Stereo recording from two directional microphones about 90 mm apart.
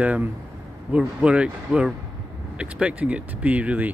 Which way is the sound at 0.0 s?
15° right (ahead or behind).